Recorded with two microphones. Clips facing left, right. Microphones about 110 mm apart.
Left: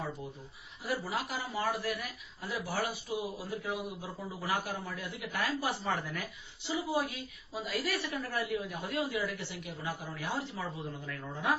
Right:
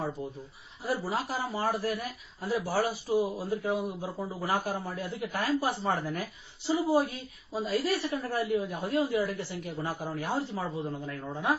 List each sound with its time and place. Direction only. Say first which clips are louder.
0.8 s speech: right 4 dB; 35° right (ahead or behind)